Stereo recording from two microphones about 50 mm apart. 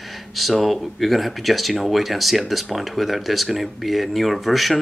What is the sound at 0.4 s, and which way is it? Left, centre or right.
Speech, centre.